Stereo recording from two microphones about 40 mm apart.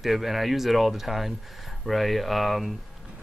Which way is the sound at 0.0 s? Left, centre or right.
Centre.